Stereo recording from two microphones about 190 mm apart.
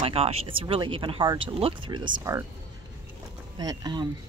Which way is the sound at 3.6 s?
20° right (ahead or behind).